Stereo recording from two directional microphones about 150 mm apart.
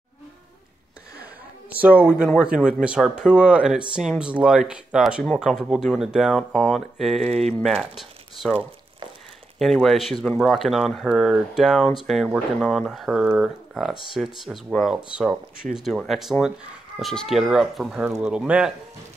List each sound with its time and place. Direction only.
1.8 s speech: 10° right (ahead or behind)
7.2 s speech: 45° right (ahead or behind)
7.5 s speech: centre (ahead or behind)
9.6 s speech: centre (ahead or behind)